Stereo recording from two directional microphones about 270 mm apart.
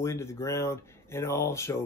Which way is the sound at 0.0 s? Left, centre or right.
Centre.